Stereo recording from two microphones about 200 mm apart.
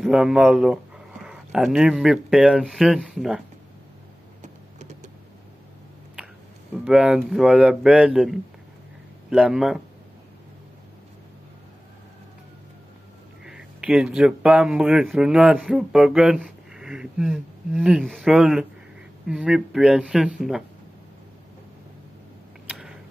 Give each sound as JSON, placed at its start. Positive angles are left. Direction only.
{"t": 0.0, "sound": "speech", "side_deg": -5}
{"t": 4.4, "sound": "vehicle", "side_deg": -35}
{"t": 6.8, "sound": "speech", "side_deg": -5}
{"t": 13.5, "sound": "speech", "side_deg": -5}